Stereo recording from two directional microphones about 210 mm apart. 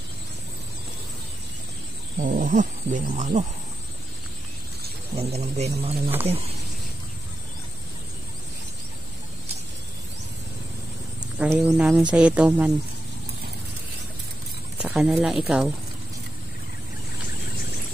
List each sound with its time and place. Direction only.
2.1 s speech: 40° right (ahead or behind)
5.1 s speech: 30° right (ahead or behind)
11.3 s speech: 10° right (ahead or behind)
14.8 s speech: 5° right (ahead or behind)